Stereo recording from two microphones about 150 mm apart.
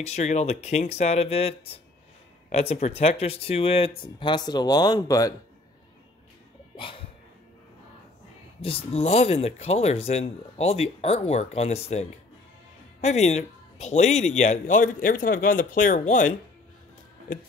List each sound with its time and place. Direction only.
0.0 s speech: 50° left (ahead or behind)
2.7 s speech: 45° left (ahead or behind); by 5.3 s 25° left (ahead or behind)
8.5 s speech: 40° left (ahead or behind); by 16.3 s 60° left (ahead or behind)